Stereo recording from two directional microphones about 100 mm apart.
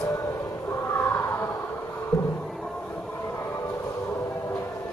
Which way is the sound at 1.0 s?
25° left (ahead or behind).